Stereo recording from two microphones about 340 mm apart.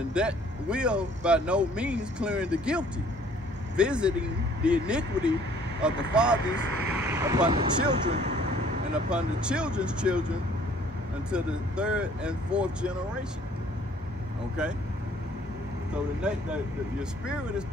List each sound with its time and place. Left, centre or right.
0.1 s speech: centre
9.1 s speech: centre
14.6 s speech: centre
16.2 s speech: centre